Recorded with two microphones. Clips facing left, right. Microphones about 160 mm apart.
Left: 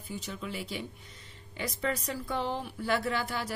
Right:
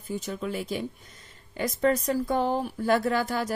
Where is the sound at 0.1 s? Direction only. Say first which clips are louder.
Right 7 dB; 45° right (ahead or behind).